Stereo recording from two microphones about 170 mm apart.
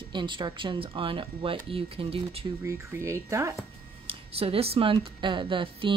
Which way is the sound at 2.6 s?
15° right (ahead or behind).